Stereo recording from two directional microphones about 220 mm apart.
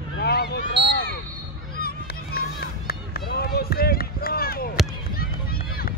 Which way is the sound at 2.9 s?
45° left (ahead or behind).